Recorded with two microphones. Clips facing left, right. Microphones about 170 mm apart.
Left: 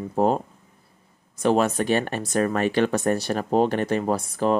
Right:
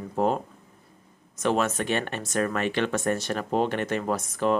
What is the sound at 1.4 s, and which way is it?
Speech, 35° left (ahead or behind).